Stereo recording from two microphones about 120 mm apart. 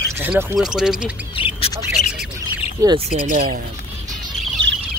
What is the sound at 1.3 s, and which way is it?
Squawk, 50° left (ahead or behind).